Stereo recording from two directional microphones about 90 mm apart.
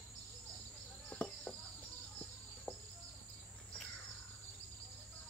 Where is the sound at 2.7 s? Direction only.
15° left (ahead or behind).